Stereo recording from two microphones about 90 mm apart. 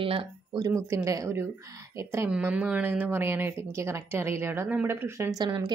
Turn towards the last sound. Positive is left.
turn(degrees=-55)  # may be behind; listen again after turning